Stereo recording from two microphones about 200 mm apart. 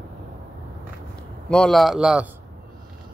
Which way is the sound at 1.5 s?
Centre (ahead or behind).